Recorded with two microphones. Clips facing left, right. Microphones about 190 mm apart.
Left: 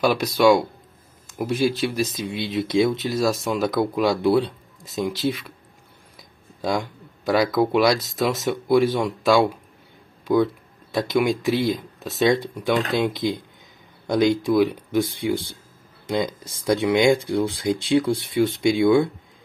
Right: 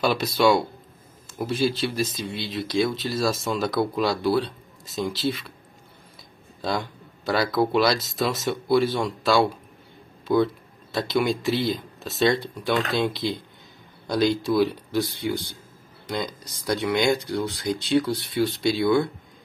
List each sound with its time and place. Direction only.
0.0 s speech: 10° left (ahead or behind)
6.6 s a sound: 15° left (ahead or behind)
7.7 s speech: 10° left (ahead or behind)